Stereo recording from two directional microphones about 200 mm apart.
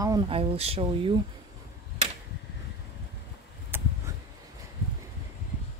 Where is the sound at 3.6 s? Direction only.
10° right (ahead or behind).